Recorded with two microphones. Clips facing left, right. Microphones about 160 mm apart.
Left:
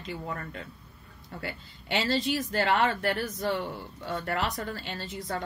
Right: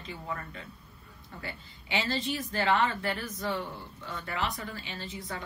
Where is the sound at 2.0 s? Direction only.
70° left (ahead or behind).